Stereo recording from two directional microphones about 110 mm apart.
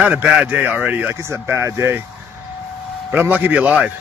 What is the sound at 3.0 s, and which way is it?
Speech, 15° right (ahead or behind).